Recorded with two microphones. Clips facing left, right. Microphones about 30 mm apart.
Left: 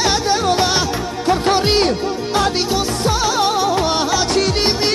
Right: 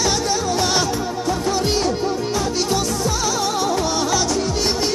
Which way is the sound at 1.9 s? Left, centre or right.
Left.